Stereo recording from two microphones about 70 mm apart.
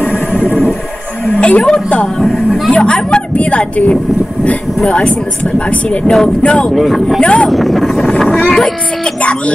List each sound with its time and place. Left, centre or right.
1.2 s a sound: centre
2.7 s speech: centre
6.7 s speech: centre
7.2 s speech: centre
7.4 s speech: centre